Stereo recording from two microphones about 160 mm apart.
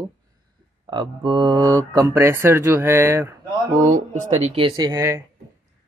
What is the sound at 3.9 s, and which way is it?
Speech, 45° right (ahead or behind).